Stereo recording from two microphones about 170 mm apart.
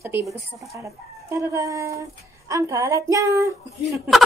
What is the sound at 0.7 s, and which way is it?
A woman's voice, 20° right (ahead or behind).